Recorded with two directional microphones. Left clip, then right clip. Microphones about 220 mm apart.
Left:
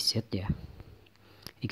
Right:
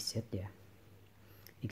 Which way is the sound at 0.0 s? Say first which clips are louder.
Left 10 dB; 20° left (ahead or behind).